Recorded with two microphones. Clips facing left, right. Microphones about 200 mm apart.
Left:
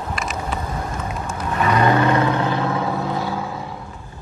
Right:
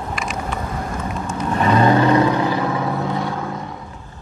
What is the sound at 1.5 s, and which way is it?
Vehicle, 30° right (ahead or behind).